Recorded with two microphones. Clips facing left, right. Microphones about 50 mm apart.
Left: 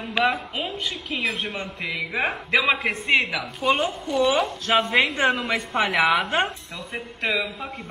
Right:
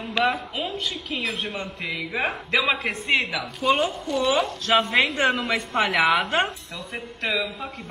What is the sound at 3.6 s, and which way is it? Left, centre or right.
Speech, centre.